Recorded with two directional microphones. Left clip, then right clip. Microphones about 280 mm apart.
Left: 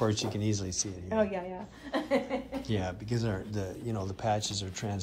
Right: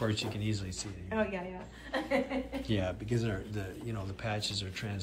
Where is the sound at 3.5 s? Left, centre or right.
Centre.